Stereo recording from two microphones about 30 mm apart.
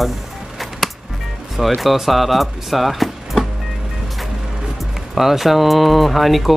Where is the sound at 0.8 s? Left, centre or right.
Centre.